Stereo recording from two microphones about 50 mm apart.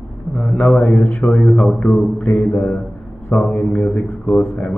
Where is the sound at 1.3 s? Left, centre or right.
Centre.